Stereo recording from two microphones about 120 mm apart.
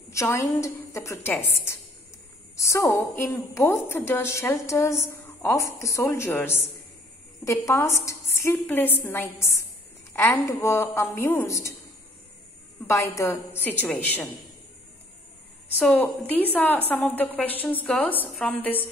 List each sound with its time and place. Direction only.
0.1 s a woman's voice: 25° left (ahead or behind)
12.8 s a woman's voice: 25° left (ahead or behind)
15.8 s a woman's voice: 10° left (ahead or behind)